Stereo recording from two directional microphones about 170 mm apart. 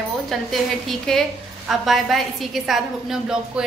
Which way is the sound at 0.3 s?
Centre (ahead or behind).